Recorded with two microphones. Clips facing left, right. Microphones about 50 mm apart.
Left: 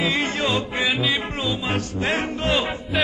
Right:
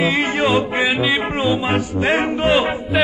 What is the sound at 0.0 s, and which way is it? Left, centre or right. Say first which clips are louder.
Music: right 5 dB; centre.